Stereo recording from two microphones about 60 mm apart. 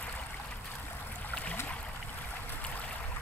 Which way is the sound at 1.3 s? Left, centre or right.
Left.